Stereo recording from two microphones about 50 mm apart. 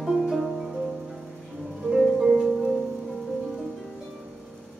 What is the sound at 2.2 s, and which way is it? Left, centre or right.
Music, centre.